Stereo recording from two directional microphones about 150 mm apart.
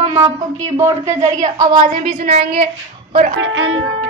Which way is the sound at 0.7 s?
20° right (ahead or behind).